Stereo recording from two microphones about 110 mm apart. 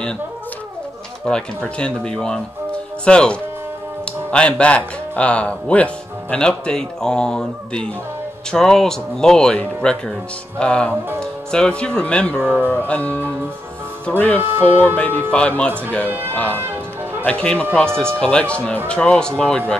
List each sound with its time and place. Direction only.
1.2 s speech: 5° left (ahead or behind)
12.4 s speech: 15° right (ahead or behind)
12.7 s speech: 15° left (ahead or behind)
16.1 s speech: 20° right (ahead or behind)
17.2 s speech: 10° left (ahead or behind)